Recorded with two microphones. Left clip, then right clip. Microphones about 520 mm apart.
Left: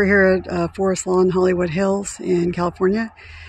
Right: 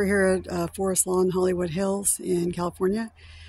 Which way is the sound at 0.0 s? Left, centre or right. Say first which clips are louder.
Left 7 dB; right.